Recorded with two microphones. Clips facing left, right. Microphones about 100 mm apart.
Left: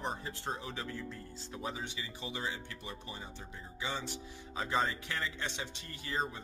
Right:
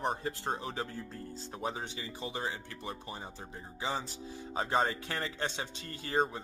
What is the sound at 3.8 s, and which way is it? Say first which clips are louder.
Speech: right 3 dB; 35° right (ahead or behind).